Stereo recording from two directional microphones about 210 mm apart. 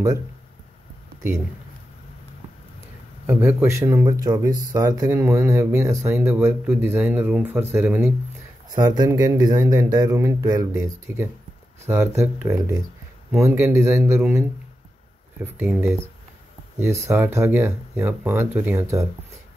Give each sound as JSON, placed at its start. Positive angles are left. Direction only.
{"t": 3.3, "sound": "speech", "side_deg": -10}